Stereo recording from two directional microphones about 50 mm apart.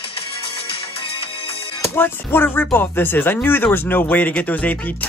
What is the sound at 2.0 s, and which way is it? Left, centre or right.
Speech, left.